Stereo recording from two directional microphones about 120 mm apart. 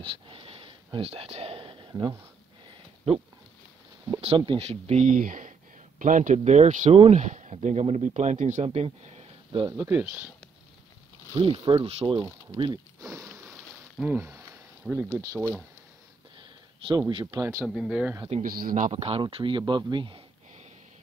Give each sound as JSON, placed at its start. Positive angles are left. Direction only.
{"t": 0.0, "sound": "a sound", "side_deg": -45}
{"t": 4.2, "sound": "speech", "side_deg": -55}
{"t": 8.6, "sound": "speech", "side_deg": -55}
{"t": 9.5, "sound": "speech", "side_deg": -40}
{"t": 9.8, "sound": "speech", "side_deg": -15}
{"t": 11.3, "sound": "speech", "side_deg": -45}
{"t": 13.4, "sound": "a sound", "side_deg": 0}
{"t": 14.0, "sound": "speech", "side_deg": -15}
{"t": 16.3, "sound": "a sound", "side_deg": -40}
{"t": 17.1, "sound": "speech", "side_deg": -40}
{"t": 17.6, "sound": "speech", "side_deg": 0}
{"t": 18.3, "sound": "speech", "side_deg": -65}
{"t": 19.2, "sound": "speech", "side_deg": -40}